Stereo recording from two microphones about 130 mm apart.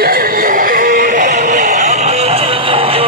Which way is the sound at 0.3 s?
90° right.